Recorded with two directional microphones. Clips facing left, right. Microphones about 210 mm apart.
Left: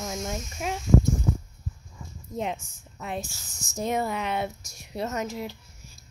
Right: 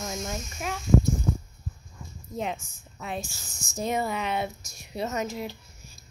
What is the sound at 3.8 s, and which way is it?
Speech, 10° right (ahead or behind).